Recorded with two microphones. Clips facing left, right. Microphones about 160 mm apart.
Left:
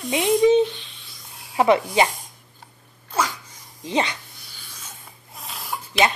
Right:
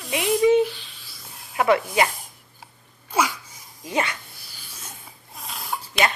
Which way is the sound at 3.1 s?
10° right (ahead or behind).